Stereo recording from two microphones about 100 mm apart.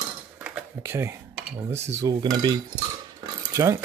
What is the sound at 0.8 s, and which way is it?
Cutlery, 25° right (ahead or behind).